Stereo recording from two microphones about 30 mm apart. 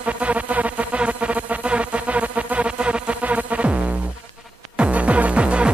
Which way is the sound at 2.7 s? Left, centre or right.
Right.